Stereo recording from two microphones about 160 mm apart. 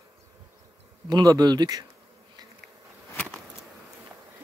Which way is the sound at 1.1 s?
25° right (ahead or behind).